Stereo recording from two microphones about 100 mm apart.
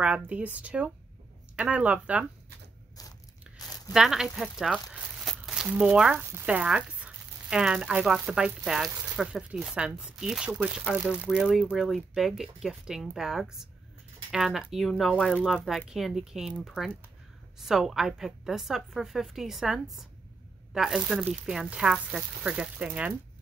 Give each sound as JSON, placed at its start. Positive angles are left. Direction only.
{"t": 0.0, "sound": "speech", "side_deg": -15}
{"t": 3.6, "sound": "a sound", "side_deg": 40}
{"t": 3.9, "sound": "a woman's voice", "side_deg": -5}